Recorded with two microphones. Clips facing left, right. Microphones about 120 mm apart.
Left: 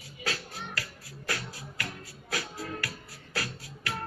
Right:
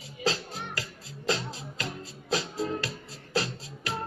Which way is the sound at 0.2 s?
25° right (ahead or behind).